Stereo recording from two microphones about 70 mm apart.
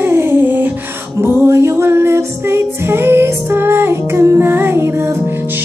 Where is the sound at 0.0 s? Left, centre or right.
Right.